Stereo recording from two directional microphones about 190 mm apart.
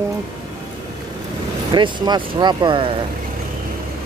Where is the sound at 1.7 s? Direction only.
25° right (ahead or behind).